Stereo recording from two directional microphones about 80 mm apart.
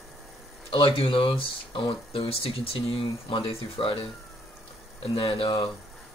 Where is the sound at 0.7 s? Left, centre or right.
Left.